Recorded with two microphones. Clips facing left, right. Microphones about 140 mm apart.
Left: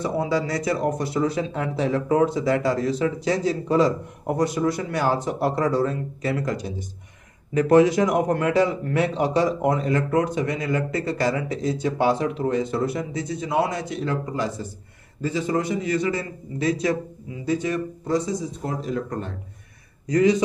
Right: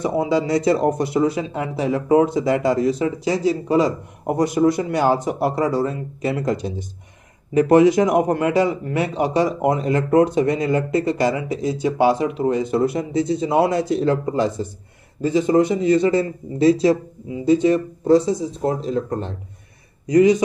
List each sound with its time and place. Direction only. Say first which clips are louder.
0.0 s speech: right 4 dB; 15° right (ahead or behind)
6.4 s a man's voice: right 5 dB; 25° right (ahead or behind)